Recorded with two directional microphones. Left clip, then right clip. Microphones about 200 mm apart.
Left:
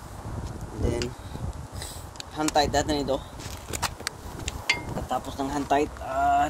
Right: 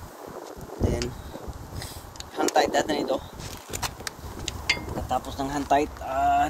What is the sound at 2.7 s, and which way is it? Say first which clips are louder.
Speech: right 1 dB; 35° left (ahead or behind).